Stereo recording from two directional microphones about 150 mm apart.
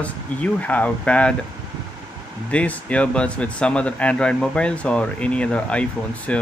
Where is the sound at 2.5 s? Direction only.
10° left (ahead or behind).